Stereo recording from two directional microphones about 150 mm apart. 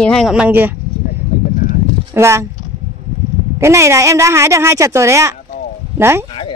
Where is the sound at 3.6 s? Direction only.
20° right (ahead or behind).